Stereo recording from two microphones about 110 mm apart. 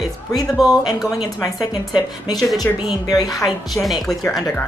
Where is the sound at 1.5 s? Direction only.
35° left (ahead or behind).